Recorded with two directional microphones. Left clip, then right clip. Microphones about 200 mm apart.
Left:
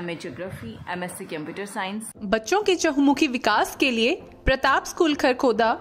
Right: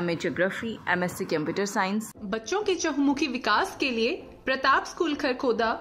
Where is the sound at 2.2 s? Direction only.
40° left (ahead or behind).